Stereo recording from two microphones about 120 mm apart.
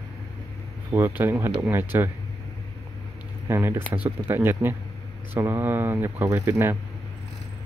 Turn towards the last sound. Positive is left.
turn(degrees=-15)  # may be behind; listen again after turning